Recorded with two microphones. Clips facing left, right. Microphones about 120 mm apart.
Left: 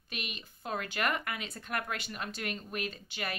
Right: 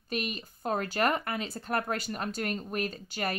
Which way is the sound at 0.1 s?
40° right (ahead or behind).